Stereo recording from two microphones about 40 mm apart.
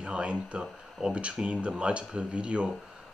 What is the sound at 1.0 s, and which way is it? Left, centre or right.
Speech, centre.